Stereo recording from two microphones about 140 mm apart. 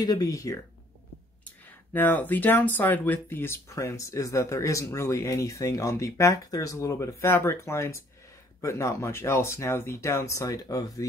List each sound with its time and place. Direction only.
0.0 s speech: 25° left (ahead or behind)
2.0 s speech: 15° left (ahead or behind)